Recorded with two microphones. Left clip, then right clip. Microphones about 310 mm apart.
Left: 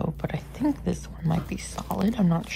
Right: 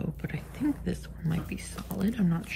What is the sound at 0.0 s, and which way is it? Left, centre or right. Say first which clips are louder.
Speech: left 7 dB; centre.